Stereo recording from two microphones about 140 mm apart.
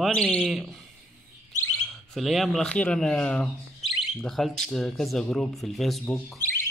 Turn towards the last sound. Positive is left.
turn(degrees=20)  # may be behind; listen again after turning